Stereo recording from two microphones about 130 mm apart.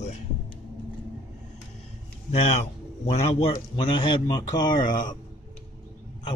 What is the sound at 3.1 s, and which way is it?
Speech, 50° left (ahead or behind).